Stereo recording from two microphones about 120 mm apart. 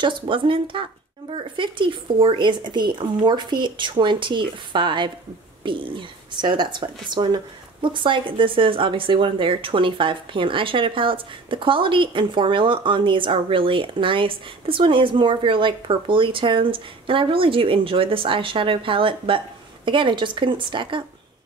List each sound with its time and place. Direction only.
0.0 s speech: 45° right (ahead or behind)